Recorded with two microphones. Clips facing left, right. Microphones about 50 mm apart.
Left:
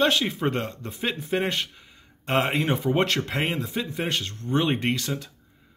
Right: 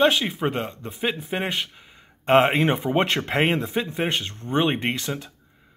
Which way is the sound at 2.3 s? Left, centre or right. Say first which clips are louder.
Right 6 dB; right.